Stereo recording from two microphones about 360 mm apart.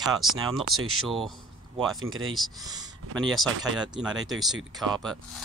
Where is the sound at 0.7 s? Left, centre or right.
Right.